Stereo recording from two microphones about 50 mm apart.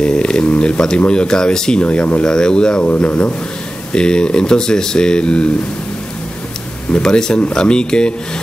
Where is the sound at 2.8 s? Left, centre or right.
Left.